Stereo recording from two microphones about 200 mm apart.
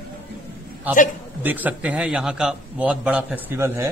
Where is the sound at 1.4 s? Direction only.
10° right (ahead or behind).